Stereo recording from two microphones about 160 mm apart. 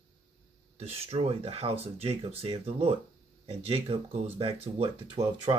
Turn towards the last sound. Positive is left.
turn(degrees=-30)  # may be behind; listen again after turning